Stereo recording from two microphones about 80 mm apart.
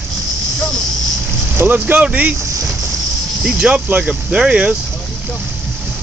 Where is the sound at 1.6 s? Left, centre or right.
Right.